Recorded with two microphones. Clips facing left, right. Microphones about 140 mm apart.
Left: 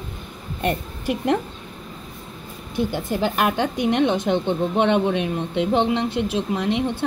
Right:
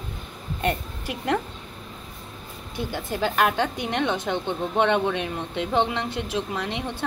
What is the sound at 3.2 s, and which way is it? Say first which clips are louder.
A woman's voice: even; 15° left (ahead or behind).